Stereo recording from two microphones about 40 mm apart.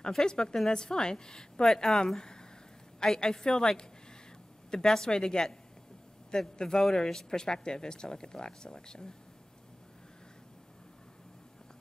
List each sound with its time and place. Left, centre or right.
0.1 s a man's voice: centre